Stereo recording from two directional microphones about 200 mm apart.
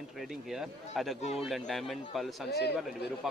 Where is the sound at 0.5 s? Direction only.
Centre (ahead or behind).